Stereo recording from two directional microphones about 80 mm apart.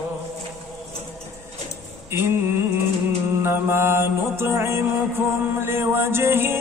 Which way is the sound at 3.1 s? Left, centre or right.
Right.